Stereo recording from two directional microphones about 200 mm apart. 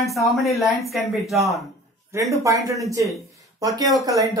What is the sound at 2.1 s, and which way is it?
Speech, 15° right (ahead or behind).